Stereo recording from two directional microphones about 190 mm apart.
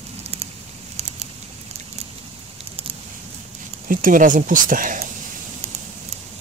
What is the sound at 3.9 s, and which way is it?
Speech, 45° right (ahead or behind).